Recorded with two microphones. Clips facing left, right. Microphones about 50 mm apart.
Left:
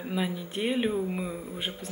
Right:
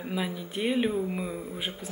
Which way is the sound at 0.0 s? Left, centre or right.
Centre.